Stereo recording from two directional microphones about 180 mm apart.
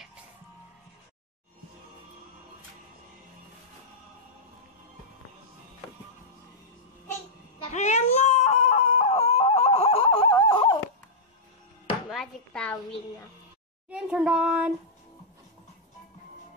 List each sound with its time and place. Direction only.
7.7 s a sound: 40° left (ahead or behind)
10.3 s dog: 25° left (ahead or behind)
12.1 s speech: centre (ahead or behind)
13.8 s a child's voice: 5° right (ahead or behind)